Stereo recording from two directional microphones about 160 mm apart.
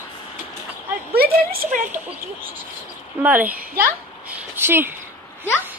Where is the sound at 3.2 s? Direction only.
10° right (ahead or behind).